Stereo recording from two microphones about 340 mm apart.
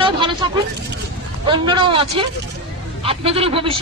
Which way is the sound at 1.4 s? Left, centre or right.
Centre.